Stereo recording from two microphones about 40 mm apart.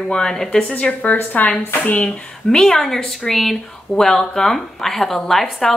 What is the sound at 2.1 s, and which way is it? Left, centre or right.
Speech, left.